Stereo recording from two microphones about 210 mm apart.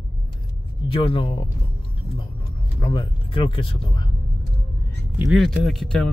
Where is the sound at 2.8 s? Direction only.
25° left (ahead or behind).